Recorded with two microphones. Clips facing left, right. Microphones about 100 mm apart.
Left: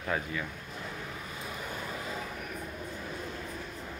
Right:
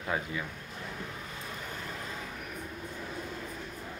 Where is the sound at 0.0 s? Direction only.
15° right (ahead or behind).